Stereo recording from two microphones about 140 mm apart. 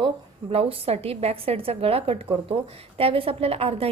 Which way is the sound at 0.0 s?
40° right (ahead or behind).